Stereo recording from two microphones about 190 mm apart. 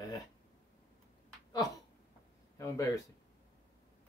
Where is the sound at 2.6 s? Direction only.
15° left (ahead or behind).